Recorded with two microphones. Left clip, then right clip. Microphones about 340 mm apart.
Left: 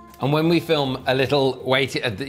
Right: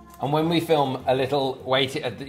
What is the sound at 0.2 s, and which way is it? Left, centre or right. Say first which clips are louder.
Speech: left 3 dB; left.